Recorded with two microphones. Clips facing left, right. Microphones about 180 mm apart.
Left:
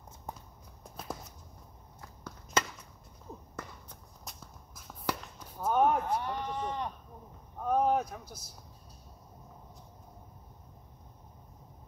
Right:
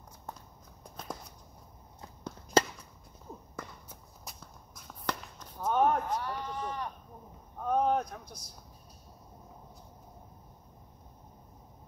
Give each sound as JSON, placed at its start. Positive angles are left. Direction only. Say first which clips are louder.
{"t": 0.3, "sound": "walk", "louder": "left 1 dB", "side_deg": 15}
{"t": 0.8, "sound": "a sound", "louder": "left 1 dB", "side_deg": 5}
{"t": 2.6, "sound": "walk", "louder": "right 6 dB", "side_deg": -35}
{"t": 3.5, "sound": "walk", "louder": "even", "side_deg": 0}
{"t": 6.1, "sound": "speech", "louder": "left 2 dB", "side_deg": 20}
{"t": 7.6, "sound": "speech", "louder": "even", "side_deg": 5}